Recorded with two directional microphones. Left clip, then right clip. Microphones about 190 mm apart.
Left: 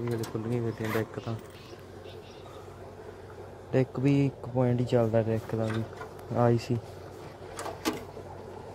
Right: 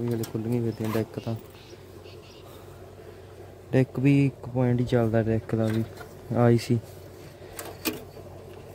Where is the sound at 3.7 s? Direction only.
35° right (ahead or behind).